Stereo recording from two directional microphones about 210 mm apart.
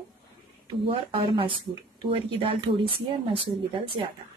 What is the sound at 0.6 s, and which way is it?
Speech, 25° right (ahead or behind).